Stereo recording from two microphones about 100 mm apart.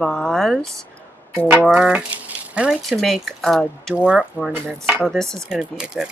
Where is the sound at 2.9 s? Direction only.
Centre (ahead or behind).